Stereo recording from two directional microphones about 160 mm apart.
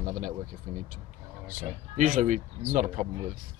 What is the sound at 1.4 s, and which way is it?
Speech, 60° right (ahead or behind).